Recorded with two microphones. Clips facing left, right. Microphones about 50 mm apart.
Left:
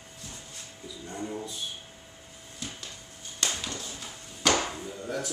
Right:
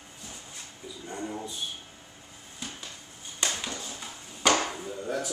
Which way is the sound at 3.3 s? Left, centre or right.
Centre.